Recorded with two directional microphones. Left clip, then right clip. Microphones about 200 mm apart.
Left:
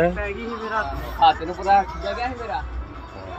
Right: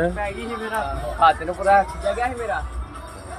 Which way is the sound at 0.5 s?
45° right (ahead or behind).